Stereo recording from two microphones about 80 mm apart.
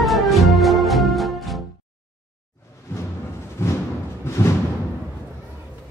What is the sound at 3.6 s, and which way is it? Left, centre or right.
Music, left.